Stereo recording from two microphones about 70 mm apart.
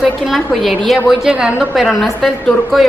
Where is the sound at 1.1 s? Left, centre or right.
Centre.